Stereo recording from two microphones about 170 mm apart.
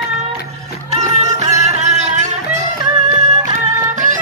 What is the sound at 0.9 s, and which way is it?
Music, 40° right (ahead or behind).